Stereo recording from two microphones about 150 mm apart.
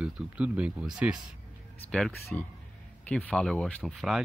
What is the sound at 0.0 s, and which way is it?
Speech, 10° right (ahead or behind).